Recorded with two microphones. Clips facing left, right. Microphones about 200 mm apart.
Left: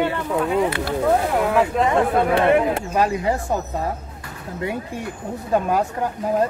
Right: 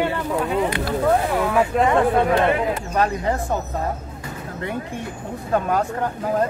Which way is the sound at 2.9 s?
10° left (ahead or behind).